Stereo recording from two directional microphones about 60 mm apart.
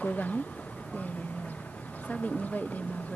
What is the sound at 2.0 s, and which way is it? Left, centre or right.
Speech, left.